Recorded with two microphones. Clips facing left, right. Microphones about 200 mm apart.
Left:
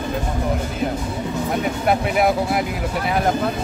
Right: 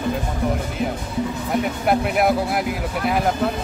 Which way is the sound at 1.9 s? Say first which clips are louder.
Even; centre (ahead or behind).